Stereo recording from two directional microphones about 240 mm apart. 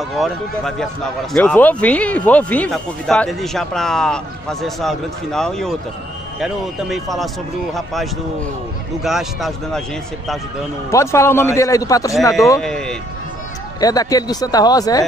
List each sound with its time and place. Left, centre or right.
0.1 s speech: centre
10.9 s a man's voice: centre
12.5 s speech: centre
13.7 s a man's voice: centre